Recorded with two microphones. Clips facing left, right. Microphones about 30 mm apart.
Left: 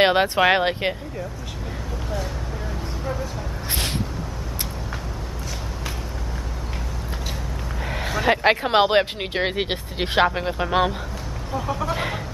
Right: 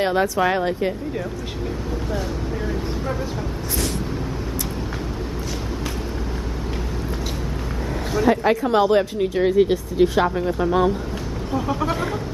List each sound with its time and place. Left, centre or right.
0.0 s speech: left
8.2 s speech: left
11.5 s speech: centre